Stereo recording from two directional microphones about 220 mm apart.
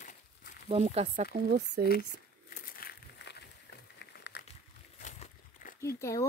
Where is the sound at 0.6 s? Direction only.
30° right (ahead or behind).